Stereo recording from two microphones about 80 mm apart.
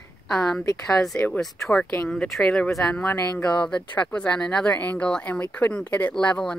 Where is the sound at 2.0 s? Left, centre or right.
Centre.